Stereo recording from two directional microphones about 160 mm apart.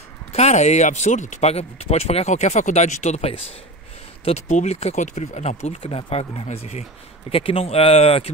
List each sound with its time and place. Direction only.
0.3 s speech: 45° left (ahead or behind)